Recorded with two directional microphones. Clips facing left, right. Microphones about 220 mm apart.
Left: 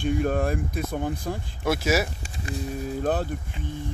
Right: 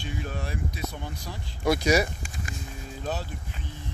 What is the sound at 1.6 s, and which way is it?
Speech, 5° left (ahead or behind).